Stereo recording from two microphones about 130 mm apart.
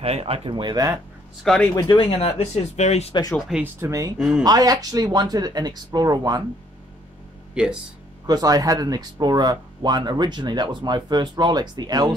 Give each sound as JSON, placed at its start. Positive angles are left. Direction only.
{"t": 0.0, "sound": "speech", "side_deg": -50}
{"t": 1.5, "sound": "speech", "side_deg": 5}
{"t": 1.8, "sound": "speech", "side_deg": 35}
{"t": 2.0, "sound": "speech", "side_deg": 50}
{"t": 3.3, "sound": "speech", "side_deg": 0}
{"t": 3.6, "sound": "speech", "side_deg": -20}
{"t": 4.2, "sound": "speech", "side_deg": -5}
{"t": 4.5, "sound": "speech", "side_deg": -30}
{"t": 7.5, "sound": "speech", "side_deg": -5}
{"t": 8.3, "sound": "speech", "side_deg": -30}